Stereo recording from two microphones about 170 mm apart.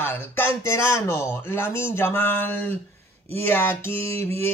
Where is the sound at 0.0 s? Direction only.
15° left (ahead or behind).